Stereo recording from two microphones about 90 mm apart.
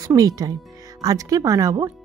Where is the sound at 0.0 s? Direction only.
40° right (ahead or behind).